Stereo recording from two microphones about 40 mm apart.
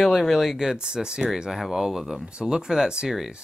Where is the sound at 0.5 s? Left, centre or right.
Centre.